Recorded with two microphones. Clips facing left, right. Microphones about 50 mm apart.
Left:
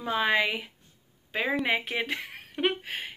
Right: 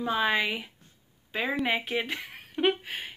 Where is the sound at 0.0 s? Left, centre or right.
Left.